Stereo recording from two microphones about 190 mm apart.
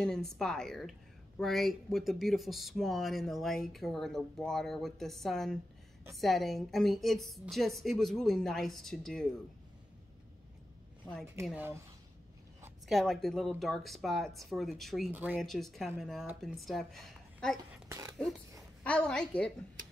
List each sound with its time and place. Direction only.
0.0 s speech: 5° left (ahead or behind)
11.4 s speech: 10° right (ahead or behind)
12.8 s speech: centre (ahead or behind)
17.8 s speech: 20° right (ahead or behind)
18.9 s speech: 5° left (ahead or behind)